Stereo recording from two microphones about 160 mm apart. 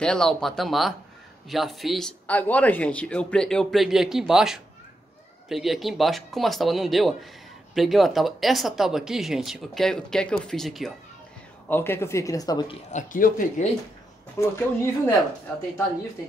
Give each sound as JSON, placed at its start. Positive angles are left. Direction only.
{"t": 0.0, "sound": "speech", "side_deg": 5}
{"t": 11.7, "sound": "speech", "side_deg": 15}
{"t": 12.9, "sound": "speech", "side_deg": 55}
{"t": 14.4, "sound": "speech", "side_deg": 20}